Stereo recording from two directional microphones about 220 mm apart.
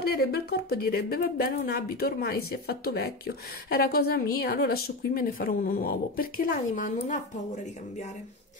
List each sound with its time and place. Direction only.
0.0 s speech: 45° left (ahead or behind)